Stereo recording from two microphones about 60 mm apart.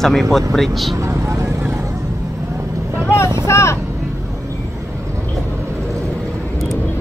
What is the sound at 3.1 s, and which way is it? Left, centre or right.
Vehicle, left.